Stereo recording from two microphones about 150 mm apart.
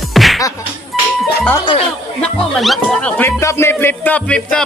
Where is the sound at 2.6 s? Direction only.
Centre (ahead or behind).